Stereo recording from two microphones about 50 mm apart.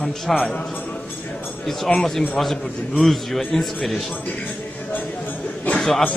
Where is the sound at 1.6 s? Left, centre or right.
Centre.